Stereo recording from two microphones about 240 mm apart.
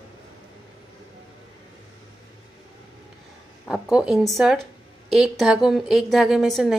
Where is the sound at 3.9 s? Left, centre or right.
Centre.